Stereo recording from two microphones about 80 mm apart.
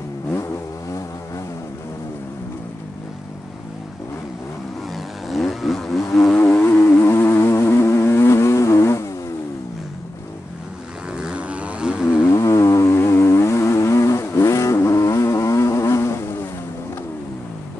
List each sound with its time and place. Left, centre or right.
4.9 s vehicle: centre
6.3 s vehicle: left
11.1 s vehicle: centre
12.3 s vehicle: left